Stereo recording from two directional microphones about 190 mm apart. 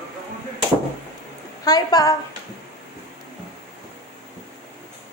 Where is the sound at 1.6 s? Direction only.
20° left (ahead or behind).